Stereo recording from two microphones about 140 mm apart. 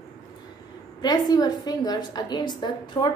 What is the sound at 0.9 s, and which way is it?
A woman's voice, 30° left (ahead or behind).